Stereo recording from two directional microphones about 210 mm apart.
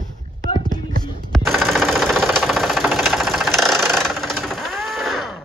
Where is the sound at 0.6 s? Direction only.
20° left (ahead or behind).